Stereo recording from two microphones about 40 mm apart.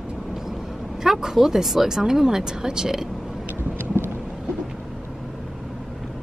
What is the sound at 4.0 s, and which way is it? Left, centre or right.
Thunder, right.